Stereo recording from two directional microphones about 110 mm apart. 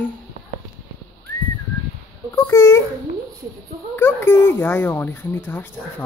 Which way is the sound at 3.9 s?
20° left (ahead or behind).